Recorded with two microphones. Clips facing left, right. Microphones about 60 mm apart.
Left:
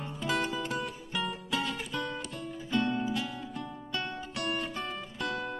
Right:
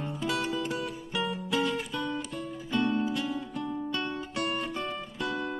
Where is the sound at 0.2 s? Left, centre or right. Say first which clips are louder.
Even; centre.